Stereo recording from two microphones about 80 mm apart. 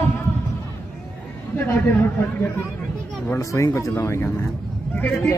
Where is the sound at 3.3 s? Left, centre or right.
Left.